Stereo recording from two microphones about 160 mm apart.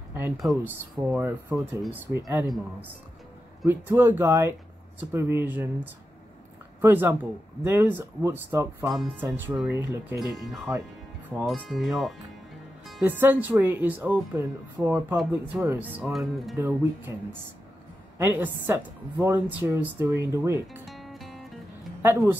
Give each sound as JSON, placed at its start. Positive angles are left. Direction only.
{"t": 0.4, "sound": "a woman's voice", "side_deg": -10}
{"t": 3.6, "sound": "a woman's voice", "side_deg": -15}
{"t": 6.8, "sound": "a woman's voice", "side_deg": -10}
{"t": 8.9, "sound": "speech", "side_deg": 0}
{"t": 9.8, "sound": "a woman's voice", "side_deg": -15}
{"t": 11.4, "sound": "speech", "side_deg": 0}
{"t": 13.0, "sound": "a woman's voice", "side_deg": -10}
{"t": 16.5, "sound": "a woman's voice", "side_deg": -15}
{"t": 18.1, "sound": "a woman's voice", "side_deg": -15}
{"t": 20.8, "sound": "music", "side_deg": 0}
{"t": 22.0, "sound": "a woman's voice", "side_deg": -15}